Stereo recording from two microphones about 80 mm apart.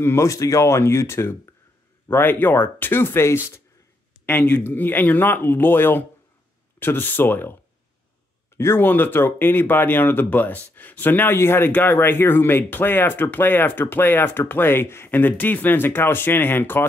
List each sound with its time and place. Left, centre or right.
0.0 s speech: left
4.3 s speech: centre
8.5 s speech: left